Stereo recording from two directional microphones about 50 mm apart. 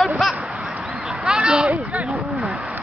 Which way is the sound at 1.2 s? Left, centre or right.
Centre.